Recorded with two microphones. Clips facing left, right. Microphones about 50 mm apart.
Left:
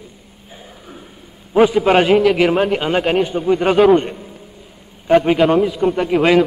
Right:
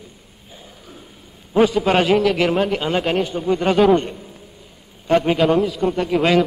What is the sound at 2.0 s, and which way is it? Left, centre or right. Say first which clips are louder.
A man's voice: left 4 dB; centre.